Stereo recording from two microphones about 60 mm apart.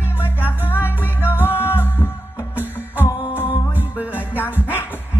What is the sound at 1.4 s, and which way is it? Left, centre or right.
Music, left.